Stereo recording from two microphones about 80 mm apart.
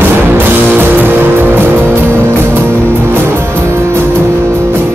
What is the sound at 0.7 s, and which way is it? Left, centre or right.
Music, right.